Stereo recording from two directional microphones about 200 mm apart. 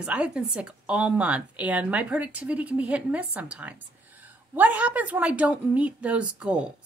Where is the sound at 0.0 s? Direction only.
5° right (ahead or behind).